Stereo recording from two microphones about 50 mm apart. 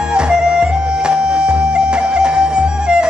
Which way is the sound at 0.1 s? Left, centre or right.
Centre.